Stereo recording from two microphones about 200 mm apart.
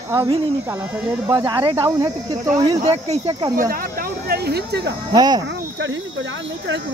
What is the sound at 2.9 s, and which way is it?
Speech, 30° right (ahead or behind).